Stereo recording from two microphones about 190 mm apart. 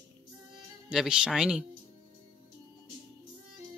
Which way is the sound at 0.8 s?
5° right (ahead or behind).